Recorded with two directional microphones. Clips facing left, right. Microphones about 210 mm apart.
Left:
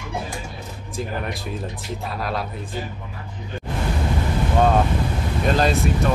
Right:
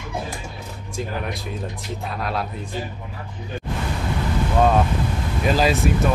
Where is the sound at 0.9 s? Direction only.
Centre (ahead or behind).